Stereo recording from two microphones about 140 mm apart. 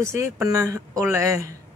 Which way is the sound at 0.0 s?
20° right (ahead or behind).